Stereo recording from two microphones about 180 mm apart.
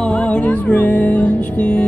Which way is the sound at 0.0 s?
5° left (ahead or behind).